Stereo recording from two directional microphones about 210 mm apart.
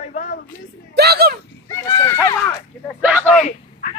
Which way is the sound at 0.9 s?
50° right (ahead or behind).